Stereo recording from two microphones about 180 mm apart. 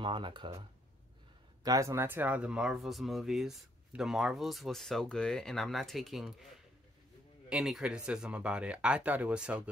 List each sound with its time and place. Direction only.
0.0 s speech: 25° right (ahead or behind)
1.6 s speech: 20° right (ahead or behind); by 6.3 s centre (ahead or behind)
7.4 s speech: 5° right (ahead or behind)